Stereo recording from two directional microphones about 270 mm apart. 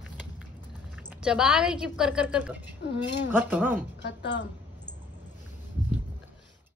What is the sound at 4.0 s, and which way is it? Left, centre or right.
Speech, left.